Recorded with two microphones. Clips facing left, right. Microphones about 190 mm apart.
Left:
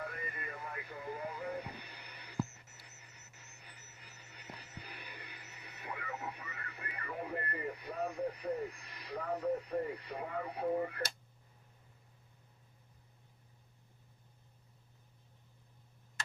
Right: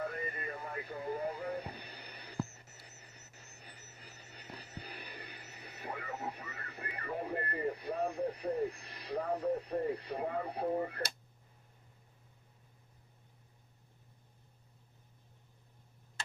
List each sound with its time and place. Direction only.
0.0 s radio: 30° right (ahead or behind)